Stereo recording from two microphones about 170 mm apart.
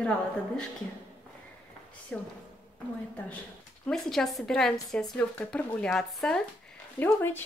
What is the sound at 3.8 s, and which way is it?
Speech, 5° left (ahead or behind).